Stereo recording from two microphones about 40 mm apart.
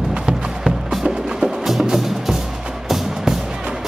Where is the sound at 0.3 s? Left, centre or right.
Centre.